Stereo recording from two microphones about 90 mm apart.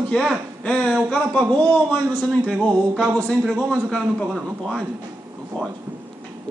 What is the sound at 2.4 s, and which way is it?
Music, 10° right (ahead or behind).